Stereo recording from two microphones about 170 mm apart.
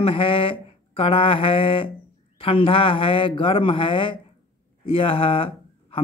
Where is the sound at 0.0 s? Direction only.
30° left (ahead or behind).